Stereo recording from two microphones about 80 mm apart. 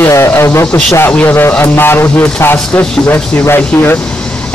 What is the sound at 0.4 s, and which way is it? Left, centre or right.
A man's voice, left.